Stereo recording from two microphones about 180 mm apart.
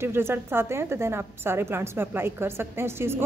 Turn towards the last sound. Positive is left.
turn(degrees=-15)  # may be behind; listen again after turning